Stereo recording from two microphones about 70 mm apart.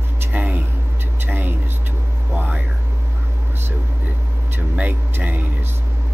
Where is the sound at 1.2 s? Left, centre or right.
Right.